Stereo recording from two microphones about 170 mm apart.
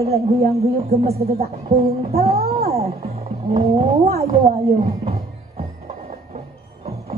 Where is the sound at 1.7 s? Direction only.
35° right (ahead or behind).